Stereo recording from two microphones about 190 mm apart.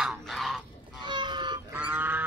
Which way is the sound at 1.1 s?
25° right (ahead or behind).